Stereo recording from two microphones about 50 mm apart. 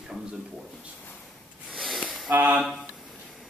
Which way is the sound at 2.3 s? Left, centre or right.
Right.